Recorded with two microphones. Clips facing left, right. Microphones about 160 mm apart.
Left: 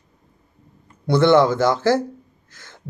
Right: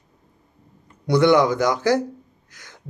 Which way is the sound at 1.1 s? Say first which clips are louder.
Left 1 dB; 15° right (ahead or behind).